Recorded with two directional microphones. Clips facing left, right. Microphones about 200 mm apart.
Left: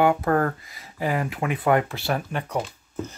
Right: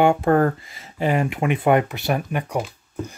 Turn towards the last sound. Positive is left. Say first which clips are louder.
# right 1 dB
turn(degrees=-5)  # may be behind; listen again after turning